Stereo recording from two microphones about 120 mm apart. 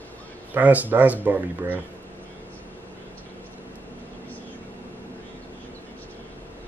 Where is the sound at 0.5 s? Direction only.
15° right (ahead or behind).